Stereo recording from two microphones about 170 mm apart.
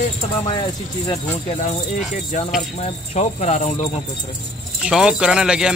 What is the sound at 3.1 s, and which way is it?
Speech, 40° left (ahead or behind).